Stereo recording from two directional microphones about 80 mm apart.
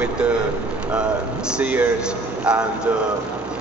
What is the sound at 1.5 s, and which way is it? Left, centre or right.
Speech, centre.